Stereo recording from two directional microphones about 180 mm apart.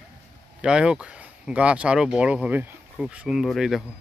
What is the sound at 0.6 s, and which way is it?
Speech, 5° right (ahead or behind).